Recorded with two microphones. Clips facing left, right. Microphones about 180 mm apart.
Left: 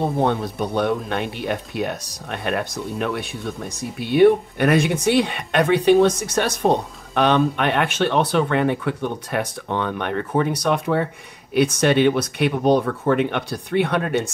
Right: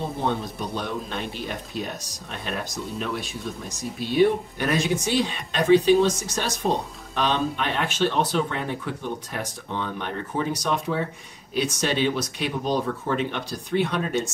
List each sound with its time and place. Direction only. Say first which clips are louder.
0.0 s speech: left 6 dB; 60° left (ahead or behind)